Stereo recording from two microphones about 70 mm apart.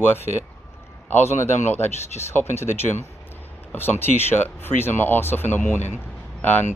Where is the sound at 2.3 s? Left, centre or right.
Left.